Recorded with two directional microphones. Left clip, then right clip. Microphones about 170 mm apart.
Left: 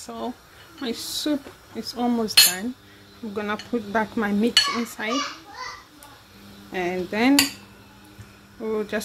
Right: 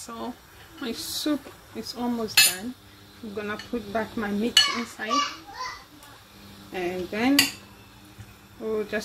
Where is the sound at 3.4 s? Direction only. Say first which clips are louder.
Left 4 dB; 25° left (ahead or behind).